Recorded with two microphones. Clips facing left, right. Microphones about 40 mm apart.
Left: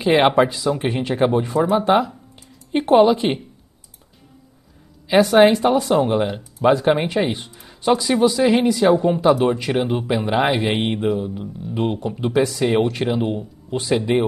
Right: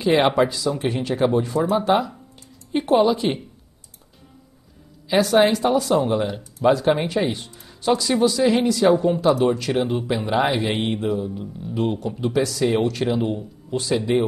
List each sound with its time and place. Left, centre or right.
0.0 s speech: centre
5.0 s speech: left